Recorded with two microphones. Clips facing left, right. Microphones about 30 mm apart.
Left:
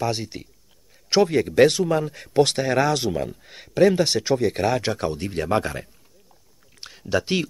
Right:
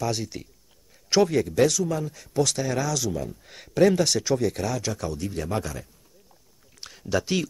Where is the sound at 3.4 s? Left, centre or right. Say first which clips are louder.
Left 2 dB; centre.